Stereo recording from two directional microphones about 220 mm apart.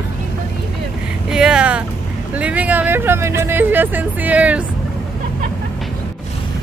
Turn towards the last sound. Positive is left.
turn(degrees=-5)  # may be behind; listen again after turning